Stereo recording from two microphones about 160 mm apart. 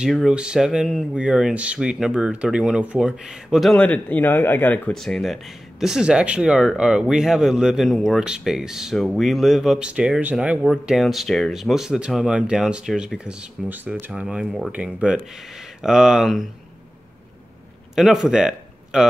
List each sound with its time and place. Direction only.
0.0 s speech: 5° right (ahead or behind)
17.9 s a man's voice: centre (ahead or behind)